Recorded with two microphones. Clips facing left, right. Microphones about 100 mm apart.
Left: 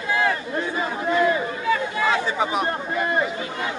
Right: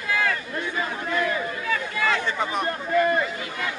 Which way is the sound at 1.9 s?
30° left (ahead or behind).